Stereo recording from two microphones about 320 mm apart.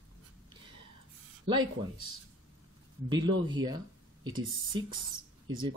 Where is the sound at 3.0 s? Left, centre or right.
Centre.